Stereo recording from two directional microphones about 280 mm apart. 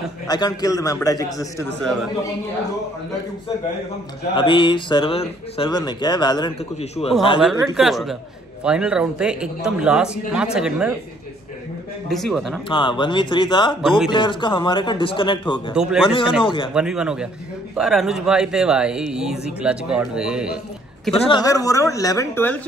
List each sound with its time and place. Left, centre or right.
0.3 s speech: centre
4.4 s speech: centre
7.3 s speech: centre
12.1 s speech: centre
12.6 s speech: centre
13.8 s speech: centre
14.1 s speech: centre
15.7 s speech: centre
16.4 s speech: centre
16.7 s speech: centre
21.3 s speech: centre